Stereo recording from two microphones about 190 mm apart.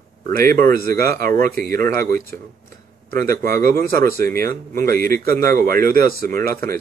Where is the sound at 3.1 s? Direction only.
50° right (ahead or behind).